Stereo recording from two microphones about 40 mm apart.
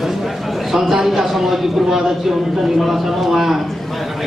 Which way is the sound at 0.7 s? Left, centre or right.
Centre.